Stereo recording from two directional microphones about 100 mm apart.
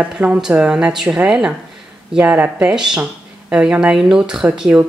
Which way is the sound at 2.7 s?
5° right (ahead or behind).